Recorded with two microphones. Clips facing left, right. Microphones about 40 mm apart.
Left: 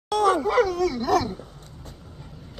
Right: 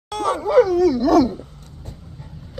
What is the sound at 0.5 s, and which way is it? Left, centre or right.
Dog, left.